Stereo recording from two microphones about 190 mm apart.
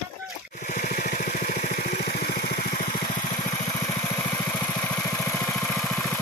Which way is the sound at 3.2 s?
20° left (ahead or behind).